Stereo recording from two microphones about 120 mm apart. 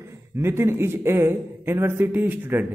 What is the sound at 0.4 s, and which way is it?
A man's voice, 20° right (ahead or behind).